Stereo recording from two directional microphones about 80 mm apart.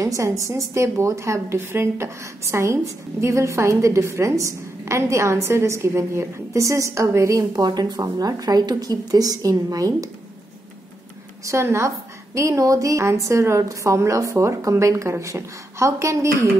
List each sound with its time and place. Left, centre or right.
0.0 s a woman's voice: right
11.4 s a woman's voice: right